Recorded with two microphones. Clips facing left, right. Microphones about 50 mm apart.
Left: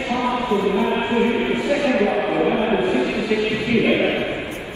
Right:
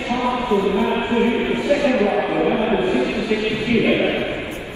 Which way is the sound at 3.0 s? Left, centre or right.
Left.